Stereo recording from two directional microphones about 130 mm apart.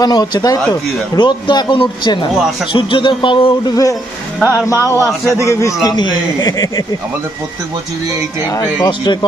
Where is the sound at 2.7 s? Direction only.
40° left (ahead or behind).